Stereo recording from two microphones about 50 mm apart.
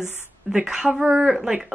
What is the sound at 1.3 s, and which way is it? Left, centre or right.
Speech, centre.